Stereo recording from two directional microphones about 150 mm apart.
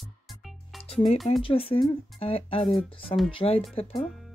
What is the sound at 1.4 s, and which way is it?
Speech, 40° left (ahead or behind).